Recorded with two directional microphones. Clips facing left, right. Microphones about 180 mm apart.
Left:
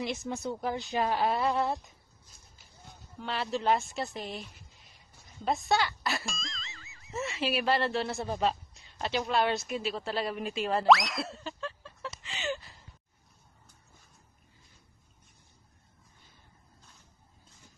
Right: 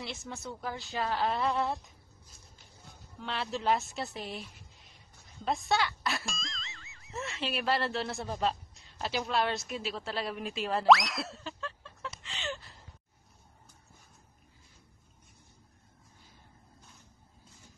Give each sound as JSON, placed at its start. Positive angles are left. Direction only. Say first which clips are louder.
{"t": 0.0, "sound": "a woman's voice", "louder": "left 7 dB", "side_deg": 15}
{"t": 3.2, "sound": "speech", "louder": "left 3 dB", "side_deg": 0}
{"t": 12.2, "sound": "a sound", "louder": "left 5 dB", "side_deg": 0}